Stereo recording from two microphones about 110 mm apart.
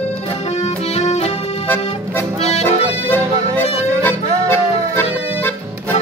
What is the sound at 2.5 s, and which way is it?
Accordion, 75° left (ahead or behind).